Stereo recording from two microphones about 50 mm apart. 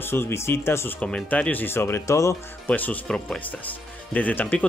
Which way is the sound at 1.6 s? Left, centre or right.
Left.